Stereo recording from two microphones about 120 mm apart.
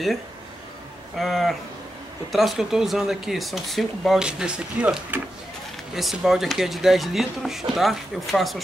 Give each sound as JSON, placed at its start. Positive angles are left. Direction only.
{"t": 1.1, "sound": "speech", "side_deg": 0}